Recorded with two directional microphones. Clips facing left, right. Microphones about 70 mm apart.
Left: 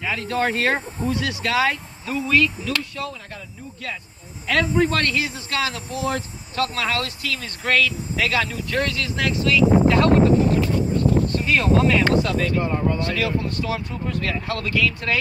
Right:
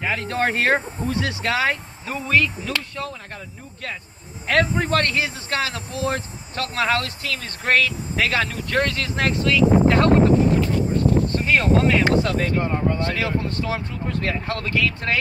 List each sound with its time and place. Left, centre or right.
0.0 s speech: right
4.5 s speech: right
11.3 s speech: right